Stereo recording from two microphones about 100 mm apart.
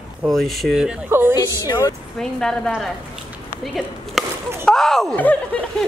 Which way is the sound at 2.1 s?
5° left (ahead or behind).